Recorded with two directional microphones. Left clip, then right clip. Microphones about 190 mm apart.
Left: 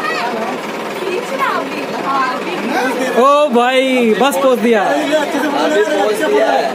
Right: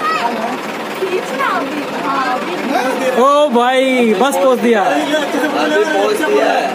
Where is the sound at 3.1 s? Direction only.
10° left (ahead or behind).